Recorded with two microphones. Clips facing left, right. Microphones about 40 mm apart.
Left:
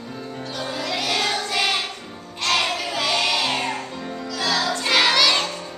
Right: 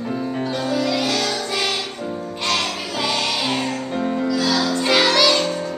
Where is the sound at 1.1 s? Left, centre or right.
Left.